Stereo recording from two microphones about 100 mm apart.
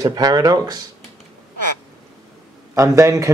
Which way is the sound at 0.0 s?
40° right (ahead or behind).